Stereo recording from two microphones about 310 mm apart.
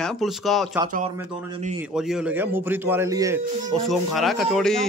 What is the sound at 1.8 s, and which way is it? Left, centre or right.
Speech, centre.